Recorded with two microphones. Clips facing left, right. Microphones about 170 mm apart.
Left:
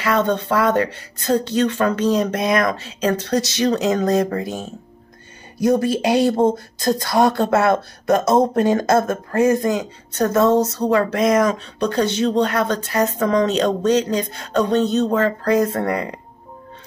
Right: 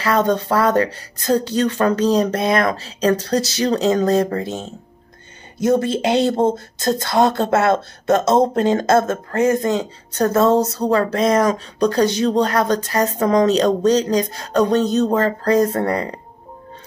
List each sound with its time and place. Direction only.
0.0 s speech: 35° right (ahead or behind)